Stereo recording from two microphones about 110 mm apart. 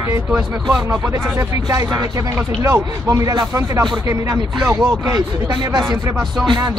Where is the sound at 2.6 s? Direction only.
25° right (ahead or behind).